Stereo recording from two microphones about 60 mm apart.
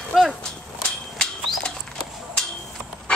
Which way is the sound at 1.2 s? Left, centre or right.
Centre.